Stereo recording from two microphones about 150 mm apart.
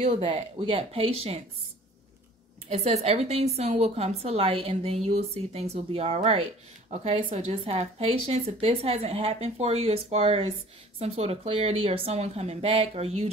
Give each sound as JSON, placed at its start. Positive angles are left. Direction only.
{"t": 0.0, "sound": "speech", "side_deg": -40}
{"t": 2.7, "sound": "a woman's voice", "side_deg": -45}